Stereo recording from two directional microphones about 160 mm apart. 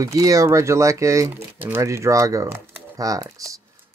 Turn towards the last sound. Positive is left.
turn(degrees=-20)  # may be behind; listen again after turning